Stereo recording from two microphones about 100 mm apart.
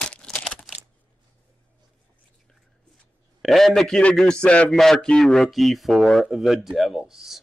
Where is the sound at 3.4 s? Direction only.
Centre (ahead or behind).